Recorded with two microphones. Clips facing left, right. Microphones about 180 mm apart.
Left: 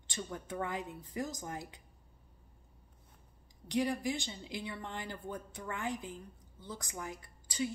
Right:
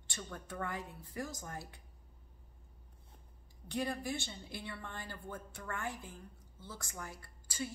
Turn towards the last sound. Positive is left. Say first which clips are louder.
# left 5 dB
turn(degrees=15)  # may be behind; listen again after turning